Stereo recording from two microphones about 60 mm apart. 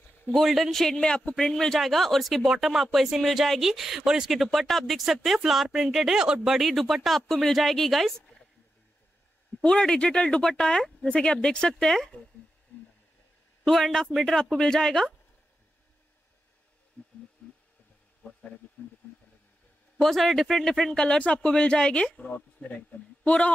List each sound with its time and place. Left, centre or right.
0.3 s speech: centre
9.6 s speech: centre
12.7 s a sound: left
13.7 s speech: centre
17.4 s a sound: centre
20.0 s speech: centre
22.1 s speech: left